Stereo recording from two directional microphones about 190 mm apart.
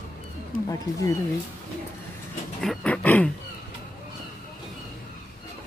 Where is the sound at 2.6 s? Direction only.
5° left (ahead or behind).